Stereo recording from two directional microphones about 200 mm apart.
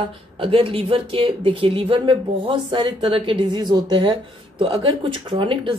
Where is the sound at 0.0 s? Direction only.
25° right (ahead or behind).